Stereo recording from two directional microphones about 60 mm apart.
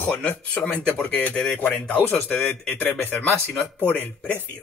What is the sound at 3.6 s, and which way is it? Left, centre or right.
Speech, left.